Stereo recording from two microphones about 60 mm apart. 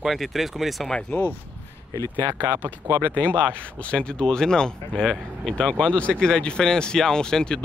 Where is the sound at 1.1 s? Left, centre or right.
Left.